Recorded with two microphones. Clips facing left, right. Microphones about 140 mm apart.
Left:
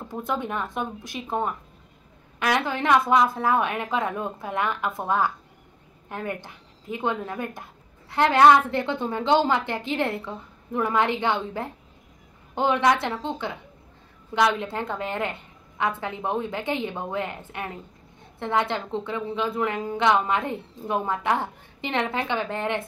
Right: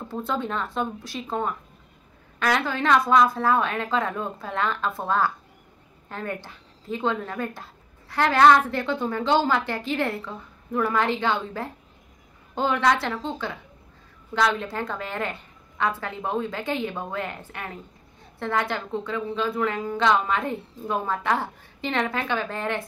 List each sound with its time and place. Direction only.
0.1 s a woman's voice: 15° left (ahead or behind)